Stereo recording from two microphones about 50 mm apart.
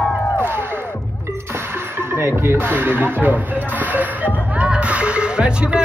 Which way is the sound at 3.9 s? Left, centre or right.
Right.